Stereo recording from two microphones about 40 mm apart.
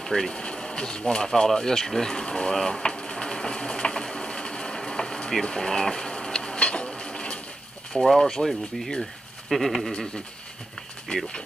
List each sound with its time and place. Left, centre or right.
0.0 s speech: centre
1.3 s a sound: centre
8.0 s goat: centre
8.3 s speech: centre
9.5 s goat: centre
11.1 s speech: left